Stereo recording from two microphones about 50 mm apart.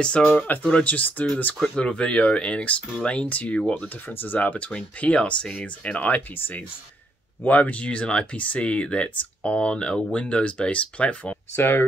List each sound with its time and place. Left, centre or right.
0.0 s speech: left
0.4 s speech: left
4.1 s speech: left
6.3 s speech: left
7.4 s speech: left
11.5 s speech: left